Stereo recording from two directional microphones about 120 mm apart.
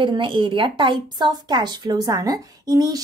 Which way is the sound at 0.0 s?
45° right (ahead or behind).